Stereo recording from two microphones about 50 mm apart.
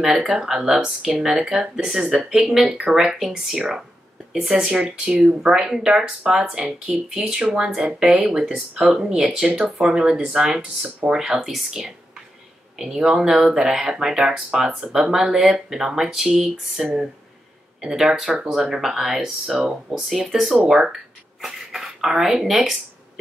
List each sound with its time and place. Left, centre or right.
0.0 s speech: centre
3.5 s speech: centre